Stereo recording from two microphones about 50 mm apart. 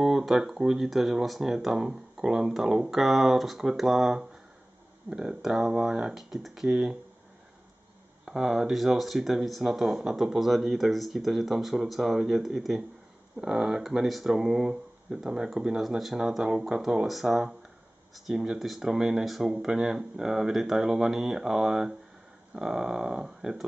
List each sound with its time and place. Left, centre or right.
0.2 s speech: centre
8.3 s speech: centre
17.1 s speech: centre